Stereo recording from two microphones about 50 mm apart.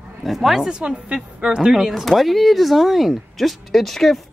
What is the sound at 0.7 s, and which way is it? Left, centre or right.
Speech, centre.